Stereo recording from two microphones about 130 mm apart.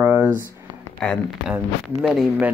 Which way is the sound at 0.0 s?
15° right (ahead or behind).